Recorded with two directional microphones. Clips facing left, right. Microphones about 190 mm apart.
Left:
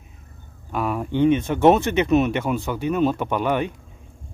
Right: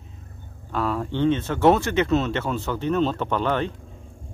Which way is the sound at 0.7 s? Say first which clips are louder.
Left 1 dB; 15° left (ahead or behind).